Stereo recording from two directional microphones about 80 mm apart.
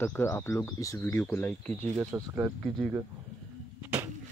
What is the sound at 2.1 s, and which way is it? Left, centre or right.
Speech, right.